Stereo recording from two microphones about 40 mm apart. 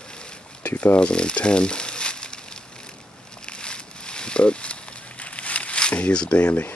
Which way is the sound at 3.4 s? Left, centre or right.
Left.